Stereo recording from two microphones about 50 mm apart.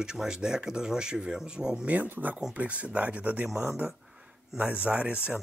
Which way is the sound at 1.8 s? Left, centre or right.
Right.